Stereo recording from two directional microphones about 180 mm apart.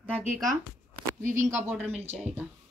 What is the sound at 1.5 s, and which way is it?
Speech, 15° right (ahead or behind).